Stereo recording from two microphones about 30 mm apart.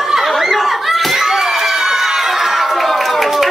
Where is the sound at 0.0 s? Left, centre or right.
Centre.